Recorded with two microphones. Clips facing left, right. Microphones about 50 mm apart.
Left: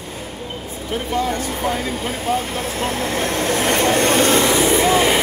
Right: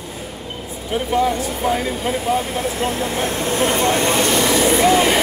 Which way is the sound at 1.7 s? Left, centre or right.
Right.